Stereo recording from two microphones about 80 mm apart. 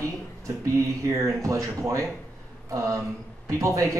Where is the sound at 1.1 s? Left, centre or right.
Right.